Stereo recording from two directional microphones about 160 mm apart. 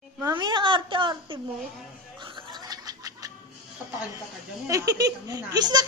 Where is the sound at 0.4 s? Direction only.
30° right (ahead or behind).